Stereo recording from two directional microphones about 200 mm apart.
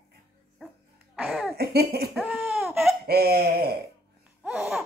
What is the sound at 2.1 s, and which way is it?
Laughter, centre (ahead or behind).